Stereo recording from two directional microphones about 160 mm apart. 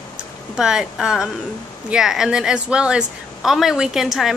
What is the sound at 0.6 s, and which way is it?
Speech, 5° right (ahead or behind).